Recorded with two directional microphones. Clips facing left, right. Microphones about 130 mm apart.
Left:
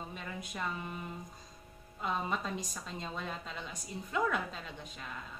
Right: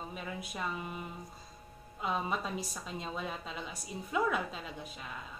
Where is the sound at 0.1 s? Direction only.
5° right (ahead or behind).